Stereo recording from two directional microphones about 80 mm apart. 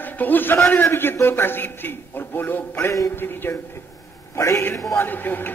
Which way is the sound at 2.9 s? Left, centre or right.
Left.